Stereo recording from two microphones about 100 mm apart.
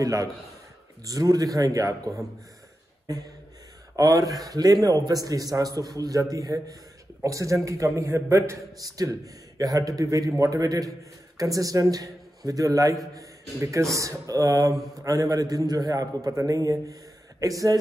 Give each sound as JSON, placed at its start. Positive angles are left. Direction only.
{"t": 0.0, "sound": "a man's voice", "side_deg": -35}
{"t": 3.9, "sound": "a man's voice", "side_deg": -35}